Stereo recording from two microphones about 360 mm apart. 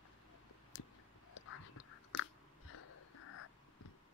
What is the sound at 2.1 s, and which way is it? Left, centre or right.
Chewing, left.